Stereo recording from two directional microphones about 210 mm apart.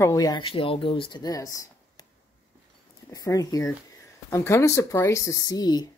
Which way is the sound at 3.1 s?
15° left (ahead or behind).